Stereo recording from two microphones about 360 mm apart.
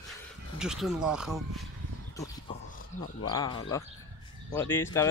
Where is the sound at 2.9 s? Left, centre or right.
Centre.